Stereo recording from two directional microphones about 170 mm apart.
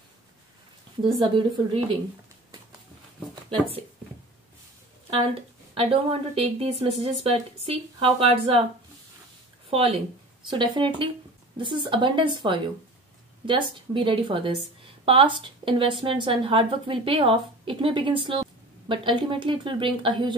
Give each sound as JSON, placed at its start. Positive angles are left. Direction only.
{"t": 1.0, "sound": "a woman's voice", "side_deg": -30}
{"t": 5.8, "sound": "a woman's voice", "side_deg": -35}
{"t": 9.7, "sound": "a woman's voice", "side_deg": -35}